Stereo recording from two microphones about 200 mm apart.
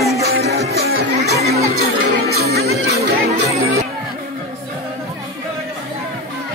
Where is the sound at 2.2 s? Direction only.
50° right (ahead or behind).